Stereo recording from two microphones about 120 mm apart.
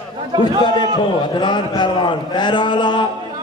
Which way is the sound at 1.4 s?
40° left (ahead or behind).